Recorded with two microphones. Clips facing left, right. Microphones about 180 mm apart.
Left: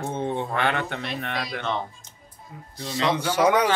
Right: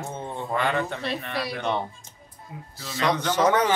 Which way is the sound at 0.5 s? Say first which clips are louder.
Even; 65° left (ahead or behind).